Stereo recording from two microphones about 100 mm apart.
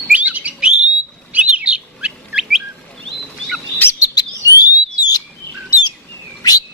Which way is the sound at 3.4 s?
Centre (ahead or behind).